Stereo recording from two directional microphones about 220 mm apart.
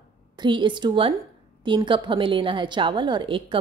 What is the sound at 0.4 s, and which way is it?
A woman's voice, 20° right (ahead or behind).